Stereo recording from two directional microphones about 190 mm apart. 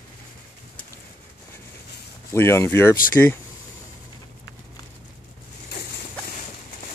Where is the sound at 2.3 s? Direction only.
15° left (ahead or behind).